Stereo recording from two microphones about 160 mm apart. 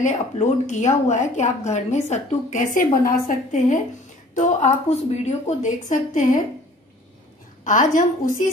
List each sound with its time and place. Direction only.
0.0 s a woman's voice: 50° left (ahead or behind)
7.6 s a woman's voice: 55° left (ahead or behind)